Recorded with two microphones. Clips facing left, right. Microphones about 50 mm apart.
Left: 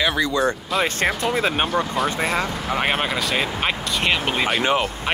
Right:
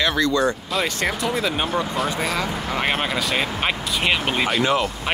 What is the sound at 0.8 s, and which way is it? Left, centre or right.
Speech, left.